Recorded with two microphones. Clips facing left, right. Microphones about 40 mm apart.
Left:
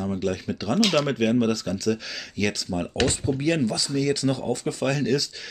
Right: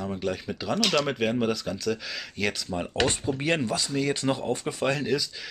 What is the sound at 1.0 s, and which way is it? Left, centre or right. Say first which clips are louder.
Speech: left 4 dB; centre.